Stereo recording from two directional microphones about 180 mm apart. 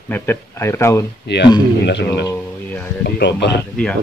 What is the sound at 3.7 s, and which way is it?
Speech, 5° left (ahead or behind).